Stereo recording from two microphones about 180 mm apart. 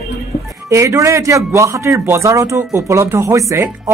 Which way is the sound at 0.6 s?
15° right (ahead or behind).